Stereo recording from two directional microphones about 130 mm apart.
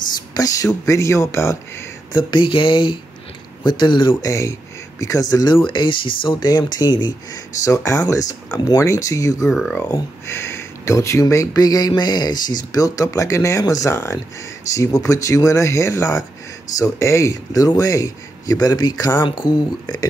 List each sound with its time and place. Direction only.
0.3 s a sound: 30° left (ahead or behind)
0.8 s speech: 25° left (ahead or behind)
2.1 s speech: 40° left (ahead or behind)
4.1 s speech: 25° left (ahead or behind)
5.3 s speech: 35° left (ahead or behind)